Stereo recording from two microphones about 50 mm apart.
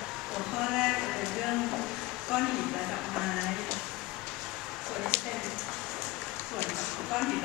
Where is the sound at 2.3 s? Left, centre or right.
Centre.